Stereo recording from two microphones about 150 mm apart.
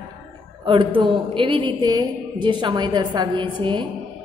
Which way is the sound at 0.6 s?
35° right (ahead or behind).